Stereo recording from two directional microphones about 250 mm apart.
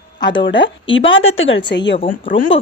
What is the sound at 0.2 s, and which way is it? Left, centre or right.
Speech, centre.